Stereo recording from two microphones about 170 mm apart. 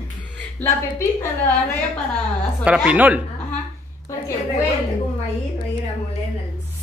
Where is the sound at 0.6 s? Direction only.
10° left (ahead or behind).